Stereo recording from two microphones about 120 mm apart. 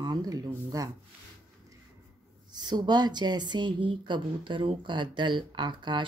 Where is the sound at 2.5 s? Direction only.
35° right (ahead or behind).